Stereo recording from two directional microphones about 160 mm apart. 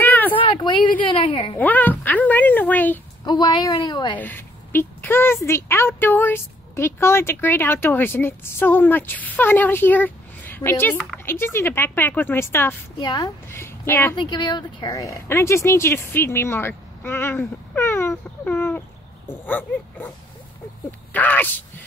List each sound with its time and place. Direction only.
0.0 s a sound: 10° left (ahead or behind)
0.4 s a sound: 30° left (ahead or behind)
1.0 s a woman's voice: 30° left (ahead or behind)
1.6 s a sound: 10° left (ahead or behind)
3.3 s a woman's voice: 30° left (ahead or behind)
4.2 s speech: 15° left (ahead or behind)
13.0 s a woman's voice: 30° left (ahead or behind)
13.5 s a woman's voice: 15° left (ahead or behind)
14.1 s speech: 30° left (ahead or behind); by 20.1 s 10° left (ahead or behind)
21.1 s speech: 10° left (ahead or behind)